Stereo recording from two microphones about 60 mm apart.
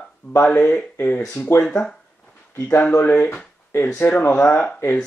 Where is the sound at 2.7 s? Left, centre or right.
Left.